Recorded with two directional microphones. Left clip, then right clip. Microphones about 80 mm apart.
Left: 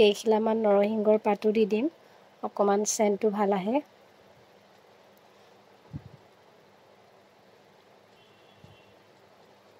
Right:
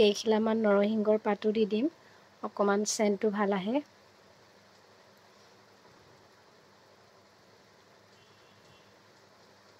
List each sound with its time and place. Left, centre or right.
0.0 s speech: left